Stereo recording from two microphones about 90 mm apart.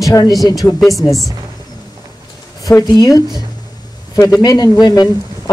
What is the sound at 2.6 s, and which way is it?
Speech, 45° left (ahead or behind).